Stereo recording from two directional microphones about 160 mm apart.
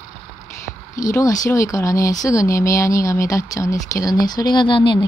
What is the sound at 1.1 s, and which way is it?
Speech, 20° left (ahead or behind).